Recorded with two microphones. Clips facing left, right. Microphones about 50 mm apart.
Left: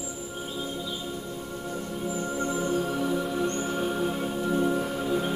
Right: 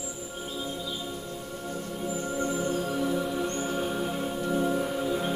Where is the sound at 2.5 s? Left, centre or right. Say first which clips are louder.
Left 1 dB; centre.